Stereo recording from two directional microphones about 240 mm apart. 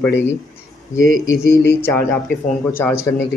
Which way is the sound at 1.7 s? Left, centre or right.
Centre.